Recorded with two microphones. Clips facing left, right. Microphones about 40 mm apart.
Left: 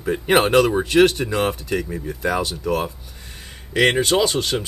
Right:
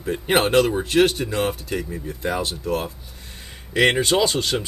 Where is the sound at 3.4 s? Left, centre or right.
Centre.